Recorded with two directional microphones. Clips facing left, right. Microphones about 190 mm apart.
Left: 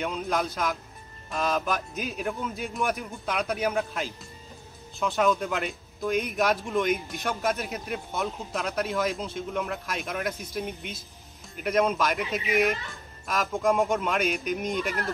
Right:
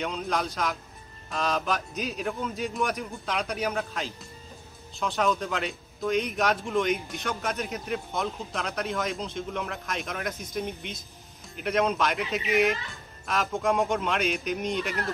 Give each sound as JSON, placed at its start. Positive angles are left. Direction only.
{"t": 0.0, "sound": "speech", "side_deg": 5}
{"t": 14.7, "sound": "speech", "side_deg": 50}